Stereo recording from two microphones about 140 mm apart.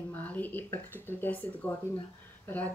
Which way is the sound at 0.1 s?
10° left (ahead or behind).